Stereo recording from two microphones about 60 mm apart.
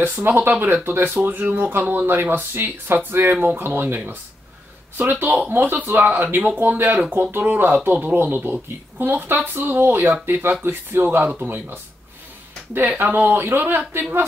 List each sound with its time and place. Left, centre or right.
0.0 s speech: right
5.2 s speech: right
7.2 s speech: right